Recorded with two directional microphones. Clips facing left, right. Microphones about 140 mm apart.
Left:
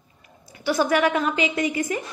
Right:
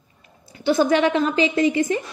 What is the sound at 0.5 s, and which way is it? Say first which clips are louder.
Speech: right 3 dB; 25° right (ahead or behind).